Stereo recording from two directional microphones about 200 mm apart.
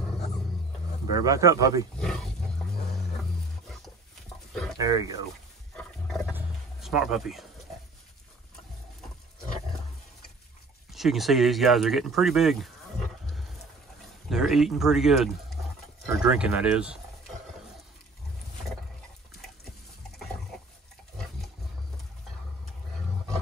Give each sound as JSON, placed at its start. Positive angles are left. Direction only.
{"t": 1.1, "sound": "speech", "side_deg": -15}
{"t": 2.0, "sound": "speech", "side_deg": 0}
{"t": 4.7, "sound": "speech", "side_deg": -15}
{"t": 5.8, "sound": "wild animals", "side_deg": 5}
{"t": 6.3, "sound": "a sound", "side_deg": -5}
{"t": 10.9, "sound": "speech", "side_deg": 0}
{"t": 14.3, "sound": "speech", "side_deg": 0}